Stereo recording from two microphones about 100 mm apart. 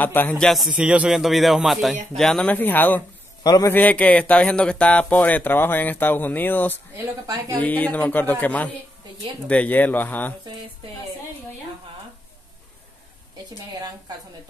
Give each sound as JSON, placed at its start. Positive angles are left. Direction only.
{"t": 0.0, "sound": "speech", "side_deg": 20}
{"t": 0.4, "sound": "speech", "side_deg": 0}
{"t": 2.4, "sound": "speech", "side_deg": 20}
{"t": 7.2, "sound": "a woman's voice", "side_deg": -40}
{"t": 7.5, "sound": "speech", "side_deg": 15}
{"t": 13.7, "sound": "a woman's voice", "side_deg": -40}